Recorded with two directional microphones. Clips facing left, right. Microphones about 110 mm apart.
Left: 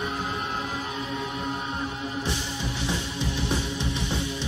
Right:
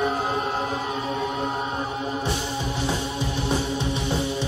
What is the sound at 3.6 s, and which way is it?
Music, 30° right (ahead or behind).